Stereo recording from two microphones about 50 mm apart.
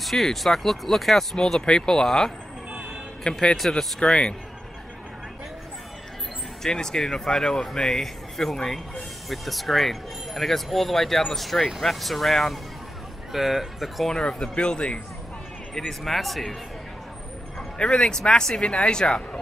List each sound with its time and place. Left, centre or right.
0.0 s speech: centre
3.5 s speech: centre
4.0 s speech: centre
6.6 s speech: centre
14.5 s speech: left
15.8 s speech: centre
17.7 s speech: centre